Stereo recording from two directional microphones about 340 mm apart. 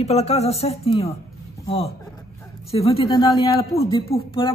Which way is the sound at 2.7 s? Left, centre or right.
Centre.